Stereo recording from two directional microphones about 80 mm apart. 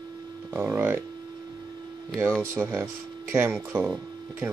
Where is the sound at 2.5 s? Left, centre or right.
Right.